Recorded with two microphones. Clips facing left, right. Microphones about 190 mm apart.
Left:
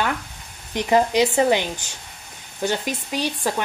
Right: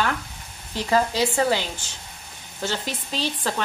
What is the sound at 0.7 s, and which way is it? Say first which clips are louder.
Speech: left 4 dB; 20° left (ahead or behind).